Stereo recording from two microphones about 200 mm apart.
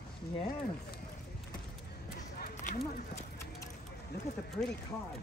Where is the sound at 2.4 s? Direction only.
40° left (ahead or behind).